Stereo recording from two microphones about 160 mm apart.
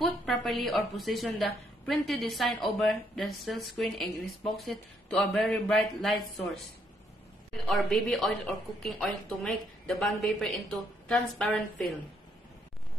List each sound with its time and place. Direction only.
0.0 s a woman's voice: 5° left (ahead or behind)
7.6 s a woman's voice: centre (ahead or behind)